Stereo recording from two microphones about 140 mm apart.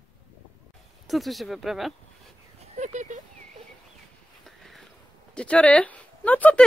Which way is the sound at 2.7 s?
60° right (ahead or behind).